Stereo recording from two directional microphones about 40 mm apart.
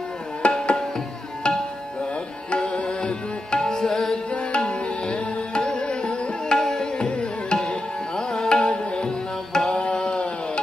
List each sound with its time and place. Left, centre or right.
0.4 s tabla: left
4.3 s music: left
6.5 s tabla: centre
8.6 s music: left
9.8 s a sound: left